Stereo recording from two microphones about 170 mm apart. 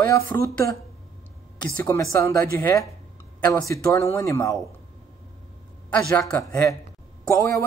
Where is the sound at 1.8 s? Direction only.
15° left (ahead or behind).